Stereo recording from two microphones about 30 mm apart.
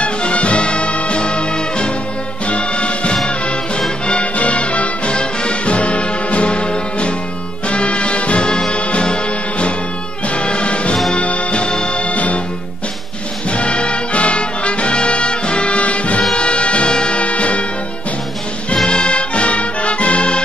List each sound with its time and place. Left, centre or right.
0.0 s music: left
5.1 s music: left
8.5 s brass instrument: left
9.0 s music: left
12.0 s music: left
13.5 s music: left
15.8 s music: left
16.3 s music: left
17.2 s music: left
18.9 s music: left